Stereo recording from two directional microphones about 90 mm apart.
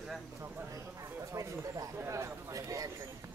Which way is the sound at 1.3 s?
40° right (ahead or behind).